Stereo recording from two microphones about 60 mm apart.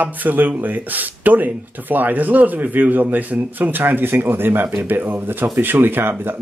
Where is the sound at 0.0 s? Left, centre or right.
Right.